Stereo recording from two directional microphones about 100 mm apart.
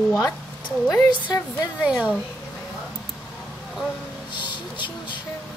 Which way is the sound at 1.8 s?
15° right (ahead or behind).